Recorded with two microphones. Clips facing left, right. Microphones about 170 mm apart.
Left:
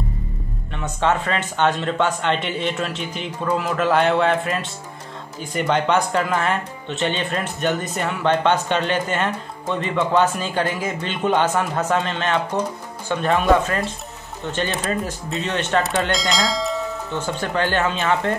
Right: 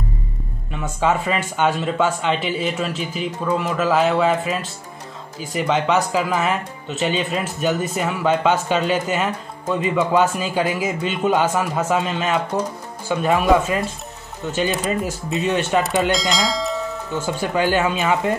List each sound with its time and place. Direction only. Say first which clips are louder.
0.7 s speech: right 1 dB; 5° right (ahead or behind)